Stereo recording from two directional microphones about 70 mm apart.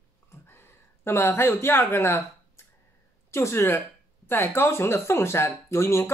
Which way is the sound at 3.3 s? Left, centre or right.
Left.